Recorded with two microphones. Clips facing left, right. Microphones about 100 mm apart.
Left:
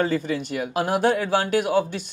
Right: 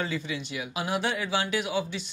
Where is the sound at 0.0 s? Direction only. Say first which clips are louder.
Left 9 dB; 45° left (ahead or behind).